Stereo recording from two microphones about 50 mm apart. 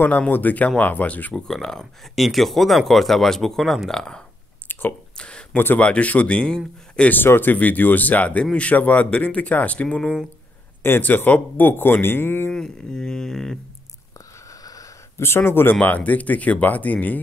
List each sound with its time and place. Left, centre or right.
0.0 s speech: left
1.3 s speech: centre
5.1 s a sound: left
5.8 s speech: left
7.2 s speech: left
7.5 s speech: left
10.8 s speech: left
11.1 s speech: left
12.5 s speech: centre
15.1 s speech: left
15.8 s speech: left